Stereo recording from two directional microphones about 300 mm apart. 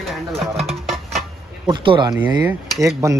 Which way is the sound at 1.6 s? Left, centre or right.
Centre.